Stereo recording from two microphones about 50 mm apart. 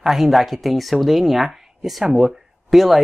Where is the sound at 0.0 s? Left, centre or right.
Centre.